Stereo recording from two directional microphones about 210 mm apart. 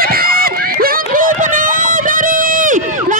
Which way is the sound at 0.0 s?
45° right (ahead or behind).